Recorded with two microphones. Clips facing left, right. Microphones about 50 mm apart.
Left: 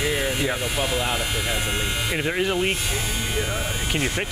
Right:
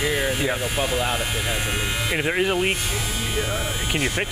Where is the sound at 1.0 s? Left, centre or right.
Right.